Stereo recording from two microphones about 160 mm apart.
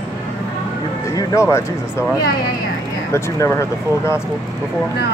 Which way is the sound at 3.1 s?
15° left (ahead or behind).